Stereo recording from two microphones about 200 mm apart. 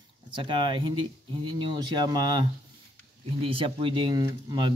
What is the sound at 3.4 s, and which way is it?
Speech, 25° right (ahead or behind).